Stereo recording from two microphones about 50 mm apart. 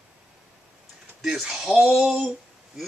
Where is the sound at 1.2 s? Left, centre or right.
Centre.